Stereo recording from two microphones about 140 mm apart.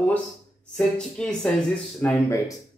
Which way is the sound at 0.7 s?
5° left (ahead or behind).